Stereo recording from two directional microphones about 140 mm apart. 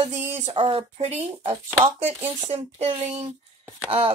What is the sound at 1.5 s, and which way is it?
Speech, 20° right (ahead or behind).